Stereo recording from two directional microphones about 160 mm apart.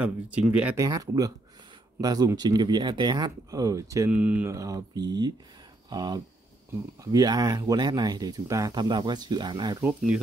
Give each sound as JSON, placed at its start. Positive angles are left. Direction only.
{"t": 0.0, "sound": "speech", "side_deg": -10}
{"t": 0.7, "sound": "speech", "side_deg": -20}
{"t": 4.1, "sound": "speech", "side_deg": -10}
{"t": 9.8, "sound": "speech", "side_deg": -10}